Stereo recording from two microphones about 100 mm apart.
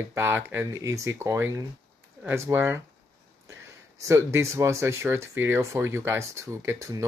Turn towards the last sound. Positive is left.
turn(degrees=-30)  # may be behind; listen again after turning